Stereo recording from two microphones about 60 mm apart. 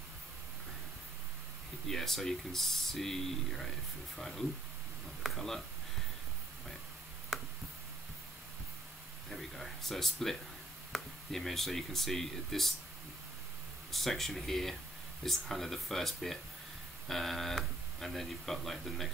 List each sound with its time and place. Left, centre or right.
1.9 s speech: centre
7.3 s a sound: centre
9.3 s speech: centre
13.9 s speech: centre